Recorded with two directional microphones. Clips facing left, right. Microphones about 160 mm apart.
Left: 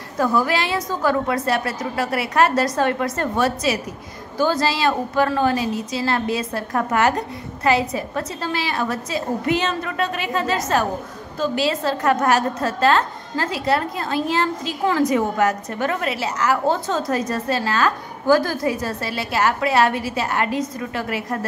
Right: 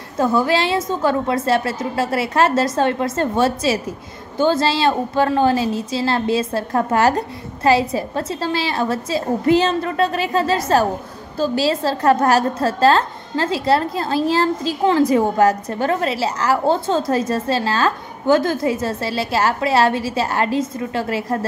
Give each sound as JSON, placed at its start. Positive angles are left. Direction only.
{"t": 0.2, "sound": "a woman's voice", "side_deg": -25}